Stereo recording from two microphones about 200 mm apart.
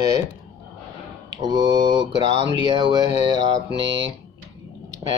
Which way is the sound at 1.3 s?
20° right (ahead or behind).